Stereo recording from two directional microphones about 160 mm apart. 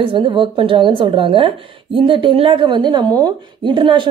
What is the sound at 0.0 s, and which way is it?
A woman's voice, 30° right (ahead or behind).